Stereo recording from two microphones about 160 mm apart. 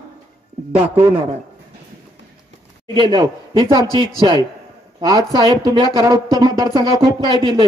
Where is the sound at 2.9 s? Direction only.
25° right (ahead or behind).